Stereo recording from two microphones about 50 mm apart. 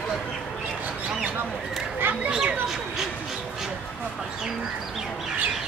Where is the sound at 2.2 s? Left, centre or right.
Centre.